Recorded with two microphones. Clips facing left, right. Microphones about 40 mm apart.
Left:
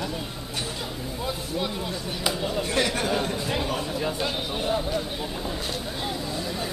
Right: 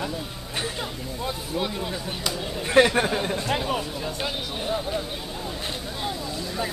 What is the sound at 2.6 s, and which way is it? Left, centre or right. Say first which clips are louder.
Chatter: right 9 dB; right.